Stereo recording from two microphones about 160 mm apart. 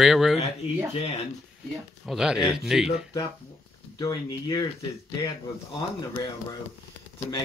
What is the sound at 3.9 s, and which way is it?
Speech, 25° left (ahead or behind).